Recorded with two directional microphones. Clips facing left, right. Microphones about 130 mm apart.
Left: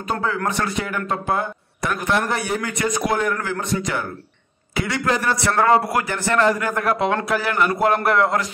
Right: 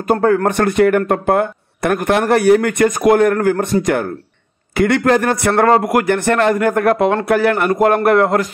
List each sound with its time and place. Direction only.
0.1 s a man's voice: 50° right (ahead or behind)